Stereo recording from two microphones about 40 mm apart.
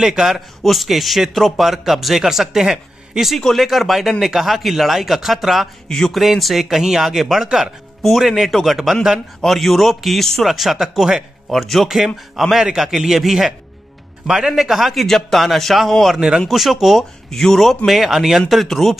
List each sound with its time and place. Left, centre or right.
0.0 s a man's voice: centre
0.6 s speech: centre
3.3 s speech: centre
5.9 s a man's voice: centre
6.1 s speech: centre
10.5 s a man's voice: centre
15.0 s speech: centre
16.2 s speech: centre
16.4 s speech: centre
17.3 s a man's voice: centre
17.6 s speech: centre